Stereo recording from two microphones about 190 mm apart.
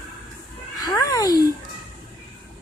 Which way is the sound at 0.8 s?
20° left (ahead or behind).